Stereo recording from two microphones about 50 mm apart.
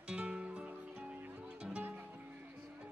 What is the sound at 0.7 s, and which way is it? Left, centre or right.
Music, right.